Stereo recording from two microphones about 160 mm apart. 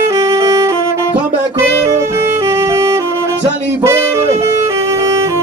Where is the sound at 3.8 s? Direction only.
15° right (ahead or behind).